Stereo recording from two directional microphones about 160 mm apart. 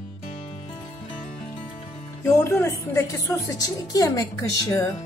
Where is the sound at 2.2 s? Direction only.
15° left (ahead or behind).